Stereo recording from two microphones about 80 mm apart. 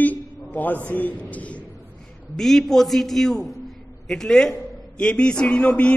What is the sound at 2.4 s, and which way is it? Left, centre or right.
A man's voice, centre.